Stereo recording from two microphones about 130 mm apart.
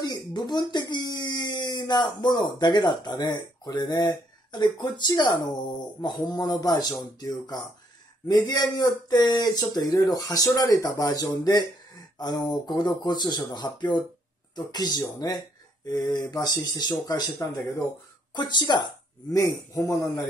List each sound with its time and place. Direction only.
0.0 s speech: 35° left (ahead or behind)
19.3 s speech: 25° left (ahead or behind)